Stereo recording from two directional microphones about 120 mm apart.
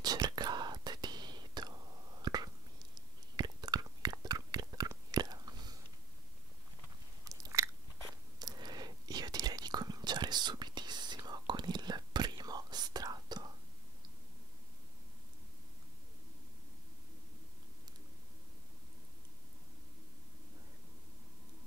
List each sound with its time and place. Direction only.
0.0 s whispering: 35° right (ahead or behind)
3.3 s chewing: 35° right (ahead or behind)
7.2 s biting: 25° right (ahead or behind)
8.4 s whispering: 35° right (ahead or behind)